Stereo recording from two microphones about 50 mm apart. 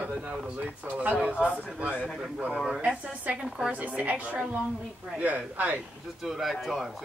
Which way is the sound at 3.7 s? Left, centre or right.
Right.